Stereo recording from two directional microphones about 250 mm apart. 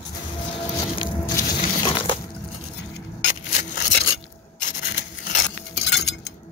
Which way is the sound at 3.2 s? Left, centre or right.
Left.